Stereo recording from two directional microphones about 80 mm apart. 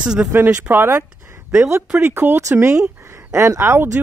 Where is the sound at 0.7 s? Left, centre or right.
Right.